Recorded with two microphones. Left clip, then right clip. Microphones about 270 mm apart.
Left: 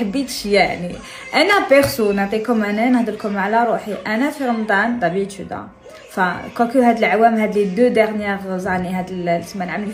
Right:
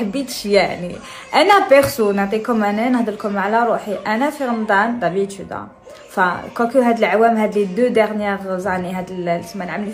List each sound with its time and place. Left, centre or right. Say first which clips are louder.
0.1 s a woman's voice: right 2 dB; centre
6.1 s a woman's voice: right 1 dB; centre